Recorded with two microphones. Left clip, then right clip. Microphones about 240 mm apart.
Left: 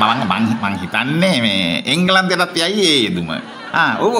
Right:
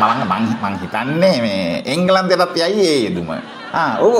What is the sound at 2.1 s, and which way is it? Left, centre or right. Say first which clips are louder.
Speech: right 2 dB; left.